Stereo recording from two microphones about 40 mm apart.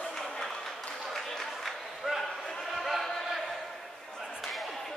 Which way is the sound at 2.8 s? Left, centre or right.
Centre.